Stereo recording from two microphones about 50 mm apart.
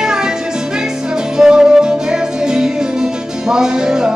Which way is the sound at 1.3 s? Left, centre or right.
Centre.